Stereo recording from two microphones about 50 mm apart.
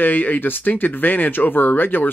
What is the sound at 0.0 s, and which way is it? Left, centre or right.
Speech, left.